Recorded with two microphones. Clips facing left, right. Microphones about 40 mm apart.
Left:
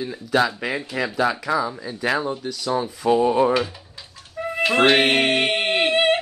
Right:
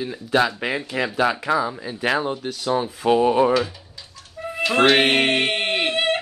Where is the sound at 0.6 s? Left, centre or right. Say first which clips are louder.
Right 1 dB; centre.